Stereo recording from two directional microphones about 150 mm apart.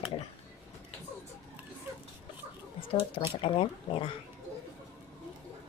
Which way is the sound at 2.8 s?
35° left (ahead or behind).